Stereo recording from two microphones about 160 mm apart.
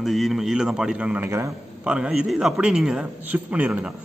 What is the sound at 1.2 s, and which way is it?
Speech, 20° right (ahead or behind).